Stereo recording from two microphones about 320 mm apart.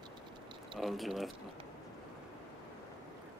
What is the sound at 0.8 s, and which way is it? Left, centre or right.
Speech, centre.